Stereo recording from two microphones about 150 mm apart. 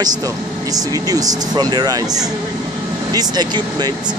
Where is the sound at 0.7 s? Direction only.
25° right (ahead or behind).